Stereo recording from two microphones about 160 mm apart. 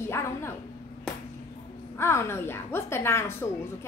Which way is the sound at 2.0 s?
15° left (ahead or behind).